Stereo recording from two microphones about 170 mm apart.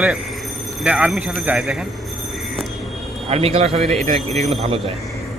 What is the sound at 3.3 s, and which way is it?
Speech, 35° right (ahead or behind).